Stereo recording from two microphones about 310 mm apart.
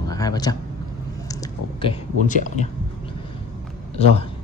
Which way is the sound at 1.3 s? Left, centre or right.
Centre.